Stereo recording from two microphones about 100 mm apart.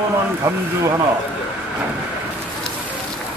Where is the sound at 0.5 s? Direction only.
35° right (ahead or behind).